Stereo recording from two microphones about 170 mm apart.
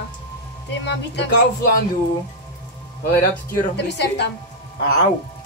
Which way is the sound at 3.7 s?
90° left.